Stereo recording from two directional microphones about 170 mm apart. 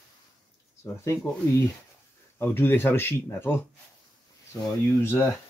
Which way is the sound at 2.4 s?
10° left (ahead or behind).